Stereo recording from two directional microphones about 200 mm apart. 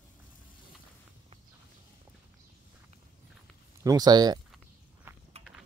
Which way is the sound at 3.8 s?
20° right (ahead or behind).